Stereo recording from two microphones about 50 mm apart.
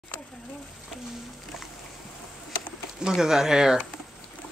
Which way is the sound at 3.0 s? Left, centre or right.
Centre.